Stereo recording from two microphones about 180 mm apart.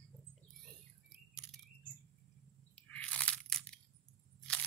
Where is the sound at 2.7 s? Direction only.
5° left (ahead or behind).